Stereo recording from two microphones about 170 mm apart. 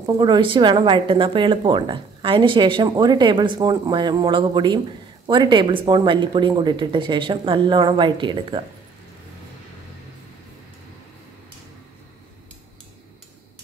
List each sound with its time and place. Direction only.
0.0 s a woman's voice: 25° right (ahead or behind)